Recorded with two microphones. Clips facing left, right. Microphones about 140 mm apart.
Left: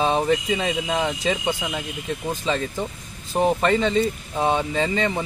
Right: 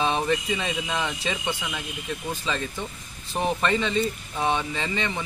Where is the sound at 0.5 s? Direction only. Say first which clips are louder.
Left 5 dB; 30° left (ahead or behind).